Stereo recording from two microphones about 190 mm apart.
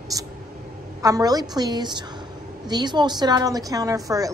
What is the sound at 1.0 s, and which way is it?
Speech, 20° right (ahead or behind).